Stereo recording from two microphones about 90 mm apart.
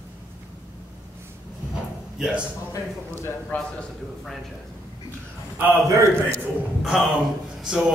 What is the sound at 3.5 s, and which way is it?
Speech, 20° left (ahead or behind).